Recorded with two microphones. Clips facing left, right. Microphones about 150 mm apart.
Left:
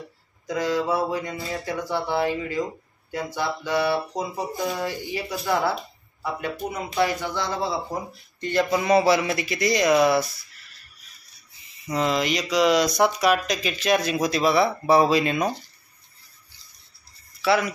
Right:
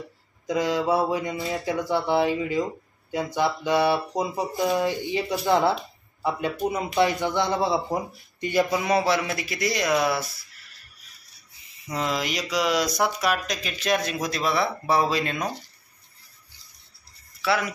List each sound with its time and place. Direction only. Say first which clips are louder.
0.5 s speech: right 1 dB; 20° right (ahead or behind)
8.4 s speech: even; 5° right (ahead or behind)
11.9 s speech: left 4 dB; 5° right (ahead or behind)
17.4 s speech: left 3 dB; centre (ahead or behind)